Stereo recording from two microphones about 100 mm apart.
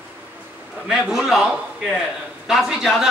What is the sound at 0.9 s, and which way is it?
Speech, 5° right (ahead or behind).